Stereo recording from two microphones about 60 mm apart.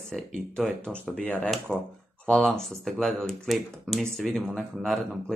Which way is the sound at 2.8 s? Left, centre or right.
Centre.